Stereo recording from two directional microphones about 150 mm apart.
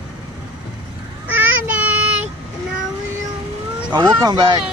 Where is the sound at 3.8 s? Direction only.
30° right (ahead or behind).